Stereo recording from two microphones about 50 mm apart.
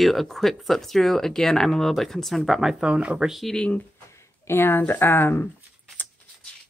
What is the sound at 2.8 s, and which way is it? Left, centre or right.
Speech, right.